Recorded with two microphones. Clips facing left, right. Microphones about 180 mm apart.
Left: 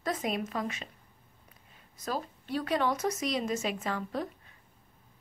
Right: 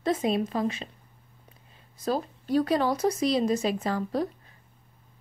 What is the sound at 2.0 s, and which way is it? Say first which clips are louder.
Speech: right 7 dB; 35° right (ahead or behind).